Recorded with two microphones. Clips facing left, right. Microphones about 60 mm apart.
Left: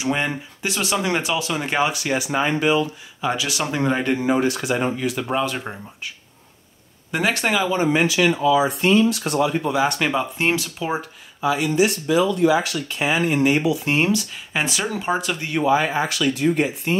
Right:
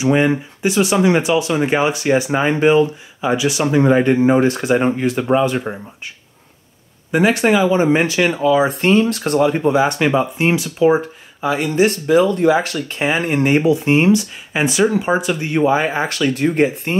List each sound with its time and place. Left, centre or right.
0.0 s speech: centre
1.9 s speech: right
3.2 s speech: centre
4.0 s speech: right
5.7 s speech: centre
7.1 s speech: centre
7.7 s speech: right
8.1 s speech: right
10.0 s speech: centre
11.0 s speech: right
13.8 s speech: right
15.5 s speech: right
16.1 s speech: right